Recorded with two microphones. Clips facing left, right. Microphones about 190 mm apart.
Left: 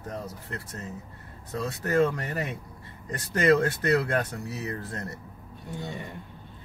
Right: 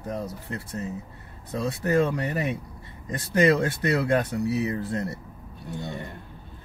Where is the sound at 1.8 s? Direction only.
15° right (ahead or behind).